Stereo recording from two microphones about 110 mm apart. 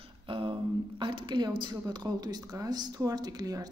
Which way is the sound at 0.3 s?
55° right (ahead or behind).